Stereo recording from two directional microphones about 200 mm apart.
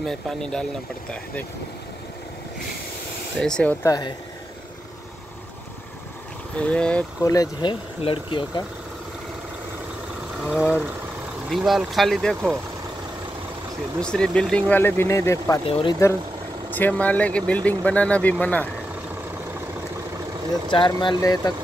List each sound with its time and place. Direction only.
0.0 s speech: centre (ahead or behind)
3.3 s speech: 5° left (ahead or behind)
3.8 s speech: 20° left (ahead or behind)
6.5 s speech: 5° left (ahead or behind)
7.2 s speech: 15° left (ahead or behind)
10.4 s speech: centre (ahead or behind)
14.0 s speech: 5° left (ahead or behind)
15.6 s speech: 25° left (ahead or behind)
16.7 s speech: 10° left (ahead or behind)
20.6 s speech: 25° left (ahead or behind)